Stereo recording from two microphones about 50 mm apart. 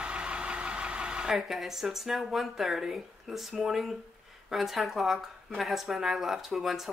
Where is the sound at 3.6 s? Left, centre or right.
Centre.